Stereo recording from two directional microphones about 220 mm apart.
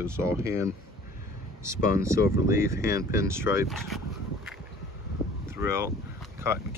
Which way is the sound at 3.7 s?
Centre (ahead or behind).